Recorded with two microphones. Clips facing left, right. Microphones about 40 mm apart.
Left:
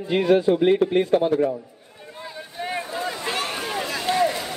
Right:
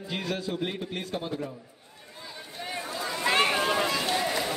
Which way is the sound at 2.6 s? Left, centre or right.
Left.